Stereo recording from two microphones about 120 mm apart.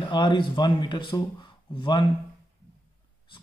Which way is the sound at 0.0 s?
40° left (ahead or behind).